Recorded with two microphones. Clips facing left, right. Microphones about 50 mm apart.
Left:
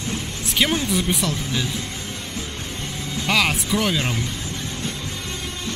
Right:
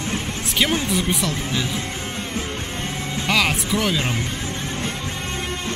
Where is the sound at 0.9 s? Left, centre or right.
Centre.